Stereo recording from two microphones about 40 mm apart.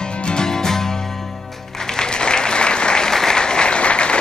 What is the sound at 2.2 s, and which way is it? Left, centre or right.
Applause, left.